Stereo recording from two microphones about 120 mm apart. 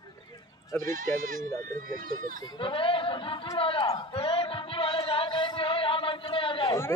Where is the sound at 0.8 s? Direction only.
90° right.